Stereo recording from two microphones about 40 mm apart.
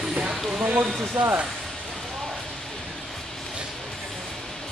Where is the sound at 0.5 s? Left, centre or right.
Right.